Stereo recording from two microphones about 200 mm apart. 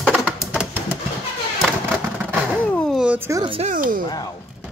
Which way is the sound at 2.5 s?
5° left (ahead or behind).